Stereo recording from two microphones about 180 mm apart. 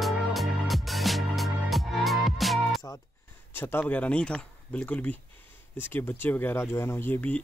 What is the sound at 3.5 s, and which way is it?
Speech, 10° left (ahead or behind).